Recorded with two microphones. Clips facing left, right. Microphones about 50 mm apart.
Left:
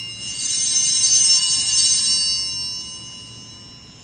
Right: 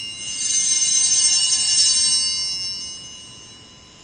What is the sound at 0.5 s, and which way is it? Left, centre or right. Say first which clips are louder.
Bell: even; centre.